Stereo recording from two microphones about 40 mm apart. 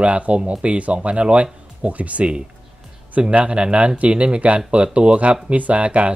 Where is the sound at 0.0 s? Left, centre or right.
Right.